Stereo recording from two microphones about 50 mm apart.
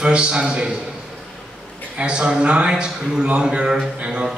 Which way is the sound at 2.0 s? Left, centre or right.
Centre.